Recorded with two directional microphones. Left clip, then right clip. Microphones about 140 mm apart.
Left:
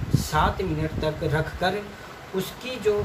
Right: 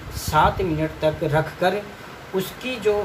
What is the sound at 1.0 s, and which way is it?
Speech, 15° right (ahead or behind).